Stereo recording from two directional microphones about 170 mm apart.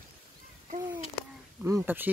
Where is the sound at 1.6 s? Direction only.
15° right (ahead or behind).